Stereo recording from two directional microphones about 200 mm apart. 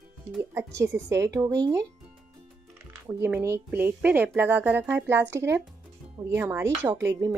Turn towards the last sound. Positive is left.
turn(degrees=-15)  # may be behind; listen again after turning